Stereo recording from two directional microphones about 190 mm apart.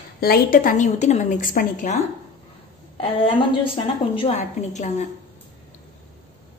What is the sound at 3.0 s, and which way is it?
A woman's voice, 30° left (ahead or behind).